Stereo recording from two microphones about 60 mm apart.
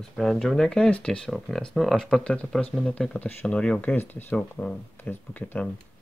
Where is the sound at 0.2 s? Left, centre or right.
Centre.